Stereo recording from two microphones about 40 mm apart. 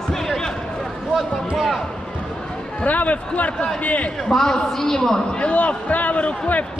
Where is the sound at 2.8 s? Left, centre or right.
Left.